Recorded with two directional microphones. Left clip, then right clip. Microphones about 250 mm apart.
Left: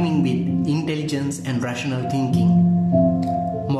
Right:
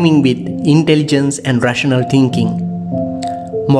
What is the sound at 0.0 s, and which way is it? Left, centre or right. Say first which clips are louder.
Speech: right 10 dB; right.